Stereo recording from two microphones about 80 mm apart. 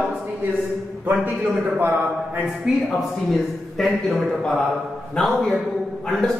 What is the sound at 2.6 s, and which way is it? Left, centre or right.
A man's voice, centre.